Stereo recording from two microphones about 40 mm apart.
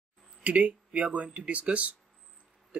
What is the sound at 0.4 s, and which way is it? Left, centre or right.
Speech, right.